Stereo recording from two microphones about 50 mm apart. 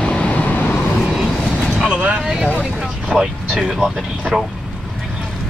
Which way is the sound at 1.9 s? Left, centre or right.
Centre.